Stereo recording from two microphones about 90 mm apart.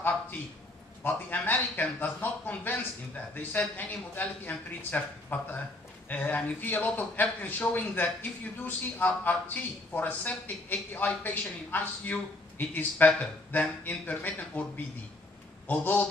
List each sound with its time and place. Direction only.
1.0 s a man's voice: 20° left (ahead or behind)
15.6 s speech: 20° left (ahead or behind)